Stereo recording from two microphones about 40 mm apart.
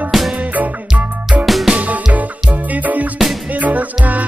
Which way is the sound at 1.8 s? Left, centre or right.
Right.